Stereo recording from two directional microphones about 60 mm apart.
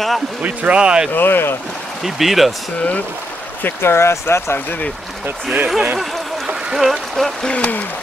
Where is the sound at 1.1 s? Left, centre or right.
Left.